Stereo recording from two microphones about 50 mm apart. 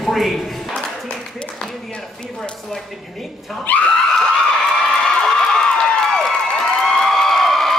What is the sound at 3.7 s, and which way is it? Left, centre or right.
Screaming, left.